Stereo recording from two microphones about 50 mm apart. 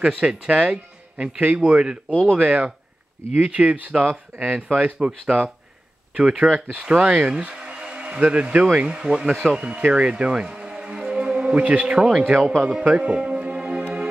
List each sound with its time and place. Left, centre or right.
0.0 s speech: centre
0.5 s speech: right
5.2 s speech: centre
12.8 s music: right